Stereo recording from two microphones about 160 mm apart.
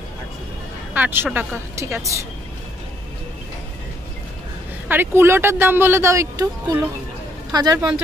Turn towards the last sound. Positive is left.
turn(degrees=-25)  # may be behind; listen again after turning